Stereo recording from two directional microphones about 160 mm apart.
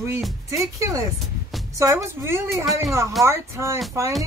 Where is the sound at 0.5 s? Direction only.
20° right (ahead or behind).